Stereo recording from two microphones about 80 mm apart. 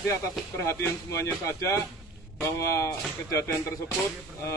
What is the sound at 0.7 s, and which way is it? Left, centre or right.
Speech, left.